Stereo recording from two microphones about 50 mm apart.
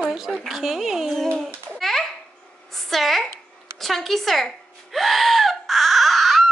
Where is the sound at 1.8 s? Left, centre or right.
Centre.